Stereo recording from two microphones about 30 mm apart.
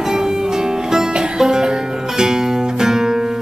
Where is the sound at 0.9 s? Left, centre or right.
Centre.